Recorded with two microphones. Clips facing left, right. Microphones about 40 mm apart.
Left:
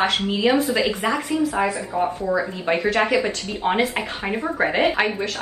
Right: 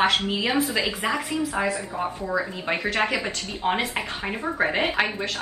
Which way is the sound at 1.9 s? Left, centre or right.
Centre.